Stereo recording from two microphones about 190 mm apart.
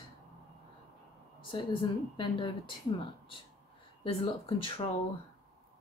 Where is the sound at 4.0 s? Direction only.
30° left (ahead or behind).